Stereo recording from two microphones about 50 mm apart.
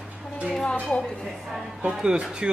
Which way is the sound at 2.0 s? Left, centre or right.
Centre.